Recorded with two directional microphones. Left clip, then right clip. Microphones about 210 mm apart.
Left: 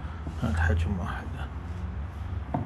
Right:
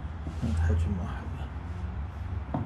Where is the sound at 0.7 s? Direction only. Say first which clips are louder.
Left 4 dB; centre (ahead or behind).